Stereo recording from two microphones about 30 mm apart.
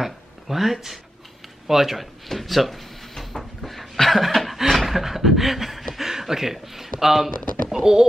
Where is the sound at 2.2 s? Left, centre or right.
Centre.